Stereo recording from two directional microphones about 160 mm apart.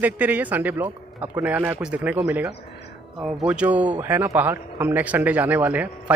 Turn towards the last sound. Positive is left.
turn(degrees=-10)  # may be behind; listen again after turning